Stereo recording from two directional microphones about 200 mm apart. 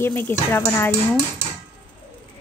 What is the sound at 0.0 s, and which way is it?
Speech, 10° left (ahead or behind).